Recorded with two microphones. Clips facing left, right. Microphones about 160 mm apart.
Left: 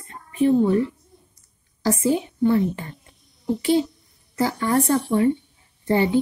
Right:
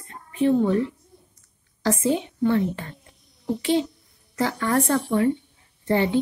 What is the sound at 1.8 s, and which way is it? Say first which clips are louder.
A woman's voice: left 2 dB; 10° left (ahead or behind).